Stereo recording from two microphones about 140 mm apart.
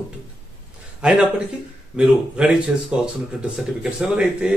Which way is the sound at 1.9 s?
5° right (ahead or behind).